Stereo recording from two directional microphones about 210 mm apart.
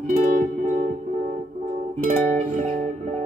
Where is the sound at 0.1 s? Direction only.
40° right (ahead or behind).